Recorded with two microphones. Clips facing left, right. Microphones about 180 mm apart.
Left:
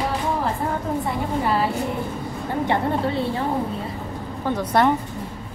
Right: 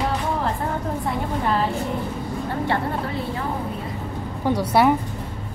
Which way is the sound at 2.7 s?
30° left (ahead or behind).